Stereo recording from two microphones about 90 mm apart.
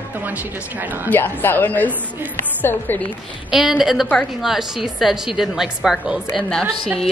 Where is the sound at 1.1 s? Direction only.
20° left (ahead or behind).